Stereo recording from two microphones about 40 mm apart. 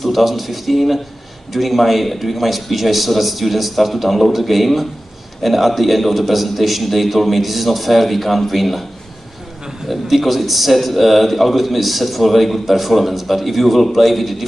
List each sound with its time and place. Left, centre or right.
0.0 s a man's voice: centre
10.1 s a man's voice: centre